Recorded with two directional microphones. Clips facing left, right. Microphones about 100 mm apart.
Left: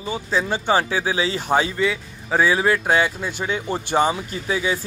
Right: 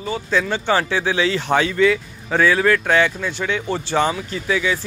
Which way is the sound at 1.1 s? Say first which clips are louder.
Right 6 dB; 30° left (ahead or behind).